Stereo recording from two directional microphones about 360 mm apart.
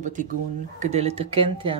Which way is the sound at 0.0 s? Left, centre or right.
Right.